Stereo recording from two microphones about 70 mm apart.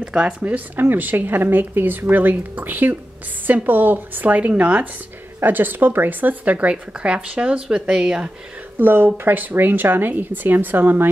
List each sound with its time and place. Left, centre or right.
0.0 s speech: centre
0.5 s speech: right; by 8.3 s centre
8.7 s speech: right